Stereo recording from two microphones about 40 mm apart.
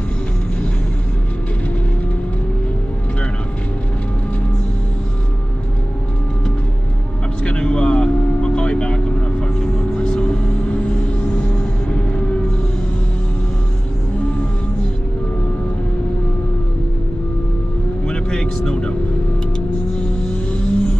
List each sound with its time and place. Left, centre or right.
7.4 s vehicle: left
9.6 s music: left
18.0 s vehicle: left
20.0 s vehicle: left